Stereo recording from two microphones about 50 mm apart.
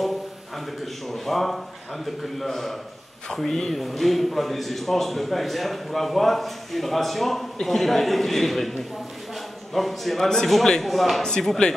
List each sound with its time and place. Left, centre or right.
1.0 s a man's voice: centre